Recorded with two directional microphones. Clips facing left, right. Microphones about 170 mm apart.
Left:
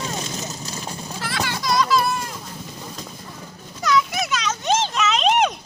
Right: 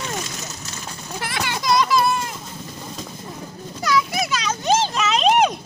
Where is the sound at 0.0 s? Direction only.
20° left (ahead or behind).